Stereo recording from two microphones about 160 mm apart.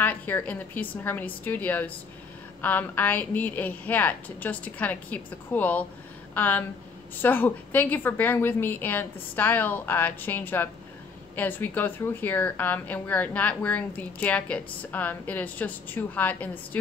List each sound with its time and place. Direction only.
0.0 s a woman's voice: 10° left (ahead or behind)